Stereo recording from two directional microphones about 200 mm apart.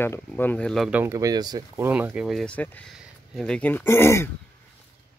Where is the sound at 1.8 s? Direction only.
10° right (ahead or behind); by 4.3 s 15° left (ahead or behind).